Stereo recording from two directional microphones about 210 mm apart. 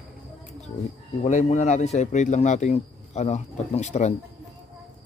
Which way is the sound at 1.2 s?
35° left (ahead or behind).